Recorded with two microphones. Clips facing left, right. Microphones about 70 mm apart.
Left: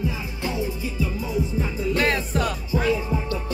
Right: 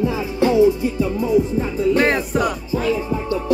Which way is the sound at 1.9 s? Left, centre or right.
Right.